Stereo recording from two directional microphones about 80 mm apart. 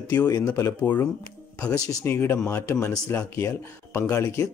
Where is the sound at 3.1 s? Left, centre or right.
Left.